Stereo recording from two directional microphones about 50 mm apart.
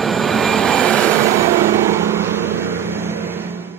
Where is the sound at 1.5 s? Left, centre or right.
Right.